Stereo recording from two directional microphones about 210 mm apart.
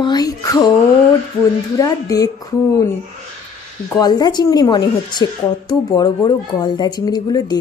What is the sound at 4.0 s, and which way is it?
Speech, 20° left (ahead or behind).